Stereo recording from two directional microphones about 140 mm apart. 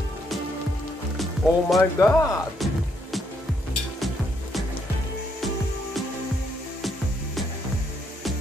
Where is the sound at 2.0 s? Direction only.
25° left (ahead or behind).